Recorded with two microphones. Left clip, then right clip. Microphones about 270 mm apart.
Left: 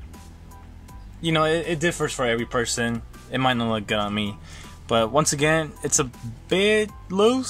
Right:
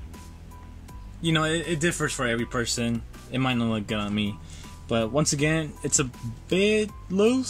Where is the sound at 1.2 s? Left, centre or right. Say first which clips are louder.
Left 4 dB; centre.